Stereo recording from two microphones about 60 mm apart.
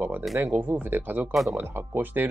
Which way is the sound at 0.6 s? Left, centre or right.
Right.